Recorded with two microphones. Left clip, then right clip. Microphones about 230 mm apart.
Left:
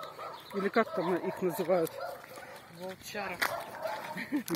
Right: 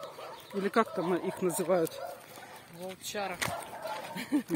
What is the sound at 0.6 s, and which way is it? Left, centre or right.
Speech, centre.